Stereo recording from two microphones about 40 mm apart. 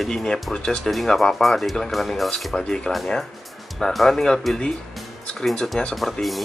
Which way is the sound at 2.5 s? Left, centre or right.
Centre.